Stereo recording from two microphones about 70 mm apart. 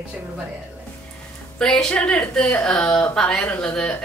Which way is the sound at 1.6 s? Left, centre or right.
Centre.